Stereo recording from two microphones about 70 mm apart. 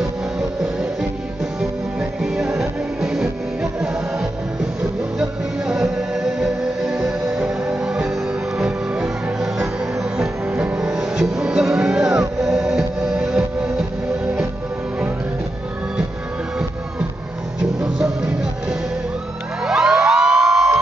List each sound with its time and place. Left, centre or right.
1.4 s music: centre
5.7 s music: centre
10.5 s music: centre
10.9 s music: centre
17.7 s music: centre